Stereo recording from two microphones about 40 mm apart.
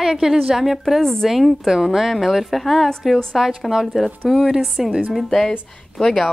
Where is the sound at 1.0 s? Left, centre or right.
Centre.